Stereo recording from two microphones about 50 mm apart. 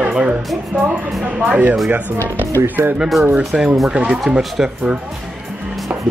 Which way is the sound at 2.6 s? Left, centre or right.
Right.